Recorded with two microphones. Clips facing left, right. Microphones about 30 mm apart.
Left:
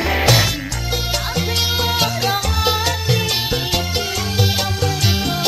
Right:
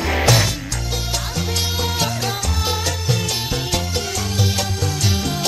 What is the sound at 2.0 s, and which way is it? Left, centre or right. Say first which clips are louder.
Music: left 4 dB; left.